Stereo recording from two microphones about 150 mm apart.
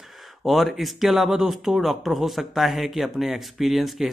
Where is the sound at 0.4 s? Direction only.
Centre (ahead or behind).